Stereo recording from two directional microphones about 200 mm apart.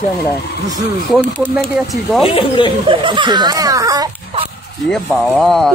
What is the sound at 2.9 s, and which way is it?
Speech, 25° right (ahead or behind).